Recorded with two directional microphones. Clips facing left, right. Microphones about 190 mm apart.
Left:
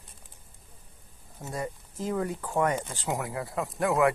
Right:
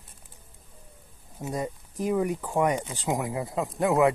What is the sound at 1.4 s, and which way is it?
Speech, 15° right (ahead or behind).